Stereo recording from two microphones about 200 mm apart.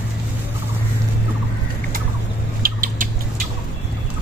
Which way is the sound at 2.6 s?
45° right (ahead or behind).